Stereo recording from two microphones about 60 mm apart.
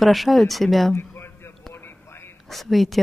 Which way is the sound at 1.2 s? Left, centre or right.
Left.